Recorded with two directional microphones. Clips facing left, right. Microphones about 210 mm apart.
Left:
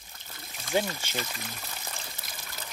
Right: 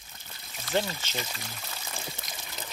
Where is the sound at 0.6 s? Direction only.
15° left (ahead or behind).